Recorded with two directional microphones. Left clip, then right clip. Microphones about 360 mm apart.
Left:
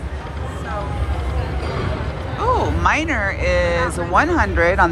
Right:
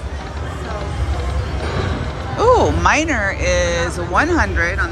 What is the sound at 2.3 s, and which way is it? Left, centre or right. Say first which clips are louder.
Speech: right 6 dB; centre.